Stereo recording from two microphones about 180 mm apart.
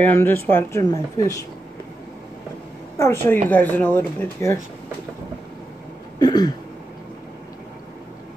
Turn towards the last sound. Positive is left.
turn(degrees=20)  # may be behind; listen again after turning